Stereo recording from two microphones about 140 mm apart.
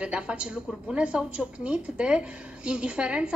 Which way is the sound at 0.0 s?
10° right (ahead or behind).